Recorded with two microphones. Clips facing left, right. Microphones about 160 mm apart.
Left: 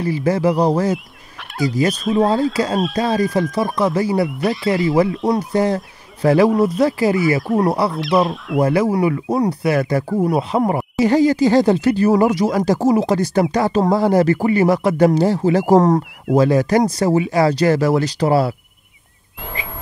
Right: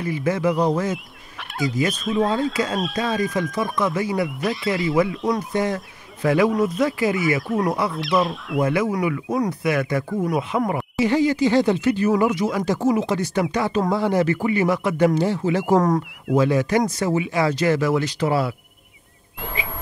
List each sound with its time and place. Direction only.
0.0 s speech: 35° left (ahead or behind)
4.4 s speech: centre (ahead or behind)
4.9 s speech: 35° left (ahead or behind)
7.4 s speech: centre (ahead or behind)
8.5 s speech: 35° left (ahead or behind)